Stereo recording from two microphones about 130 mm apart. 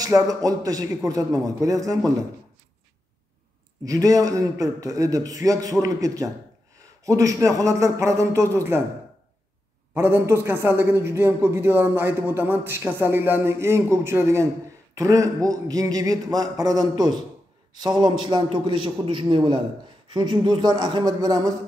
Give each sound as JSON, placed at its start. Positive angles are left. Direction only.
{"t": 0.0, "sound": "a man's voice", "side_deg": -30}
{"t": 3.8, "sound": "a man's voice", "side_deg": -25}
{"t": 9.9, "sound": "a man's voice", "side_deg": -20}